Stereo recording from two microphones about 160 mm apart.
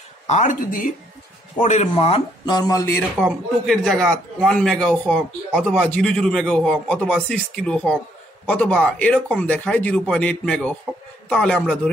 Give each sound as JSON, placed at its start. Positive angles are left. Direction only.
{"t": 0.3, "sound": "speech", "side_deg": 50}
{"t": 1.6, "sound": "a man's voice", "side_deg": 45}
{"t": 3.2, "sound": "a man's voice", "side_deg": 0}